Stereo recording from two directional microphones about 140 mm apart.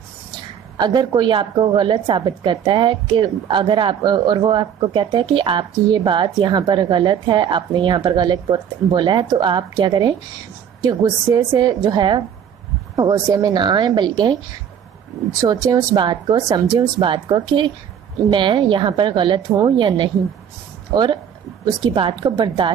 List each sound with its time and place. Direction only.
0.7 s a woman's voice: 30° right (ahead or behind)
15.4 s a woman's voice: 25° right (ahead or behind)